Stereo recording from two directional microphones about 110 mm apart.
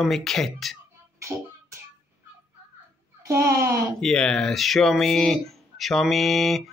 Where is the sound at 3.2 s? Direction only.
25° right (ahead or behind).